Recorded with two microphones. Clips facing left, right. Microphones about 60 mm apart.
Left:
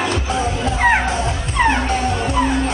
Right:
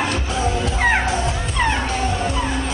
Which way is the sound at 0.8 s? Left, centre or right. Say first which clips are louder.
Left 3 dB; centre.